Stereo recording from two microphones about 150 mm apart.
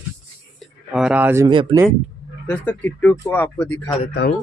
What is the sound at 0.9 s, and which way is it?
Speech, 5° right (ahead or behind).